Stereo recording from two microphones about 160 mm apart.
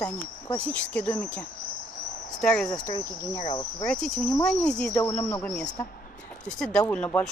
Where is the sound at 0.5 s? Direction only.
10° left (ahead or behind).